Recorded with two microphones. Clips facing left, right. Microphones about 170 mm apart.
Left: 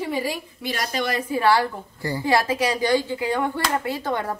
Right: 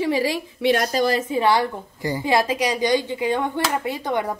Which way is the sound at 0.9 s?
35° right (ahead or behind).